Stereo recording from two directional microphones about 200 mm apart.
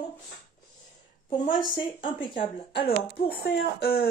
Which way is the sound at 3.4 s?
50° left (ahead or behind).